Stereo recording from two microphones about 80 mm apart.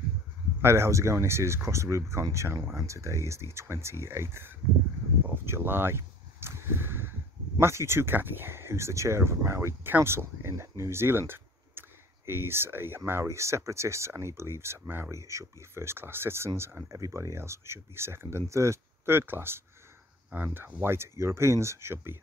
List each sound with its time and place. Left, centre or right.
0.6 s speech: right
5.2 s a sound: right
7.6 s speech: right